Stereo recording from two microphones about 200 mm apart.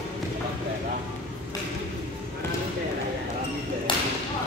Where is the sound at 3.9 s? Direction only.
25° left (ahead or behind).